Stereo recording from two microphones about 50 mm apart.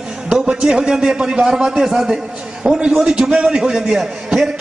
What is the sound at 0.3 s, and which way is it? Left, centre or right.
A man's voice, centre.